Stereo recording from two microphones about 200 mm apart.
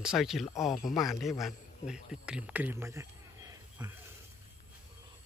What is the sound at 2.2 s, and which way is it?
Speech, 5° right (ahead or behind).